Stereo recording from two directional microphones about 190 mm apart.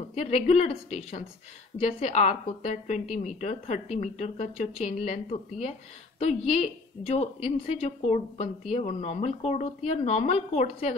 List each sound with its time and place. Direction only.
0.1 s a woman's voice: 35° left (ahead or behind)